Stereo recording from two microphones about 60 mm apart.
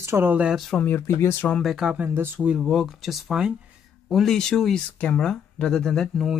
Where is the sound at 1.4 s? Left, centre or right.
Left.